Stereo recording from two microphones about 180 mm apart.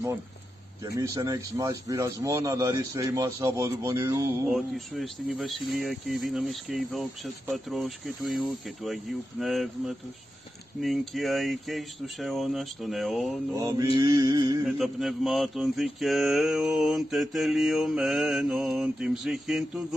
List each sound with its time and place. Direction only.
0.9 s speech: 15° right (ahead or behind)
4.5 s mantra: centre (ahead or behind)
13.5 s speech: 20° right (ahead or behind)
13.9 s mantra: 20° right (ahead or behind)
14.8 s mantra: centre (ahead or behind)